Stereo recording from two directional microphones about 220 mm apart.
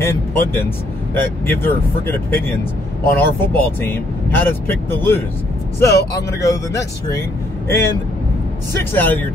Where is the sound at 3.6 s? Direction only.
10° left (ahead or behind).